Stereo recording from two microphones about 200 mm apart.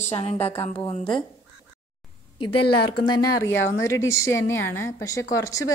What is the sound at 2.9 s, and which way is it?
A woman's voice, 20° left (ahead or behind).